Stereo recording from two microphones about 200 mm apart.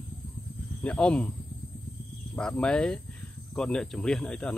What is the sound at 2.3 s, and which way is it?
Speech, 5° left (ahead or behind).